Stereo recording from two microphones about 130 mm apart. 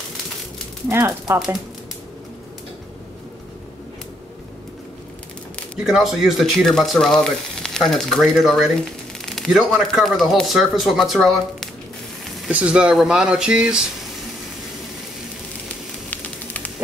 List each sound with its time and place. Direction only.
0.8 s speech: 20° right (ahead or behind)
5.9 s speech: 5° right (ahead or behind)
16.1 s a sound: 15° left (ahead or behind)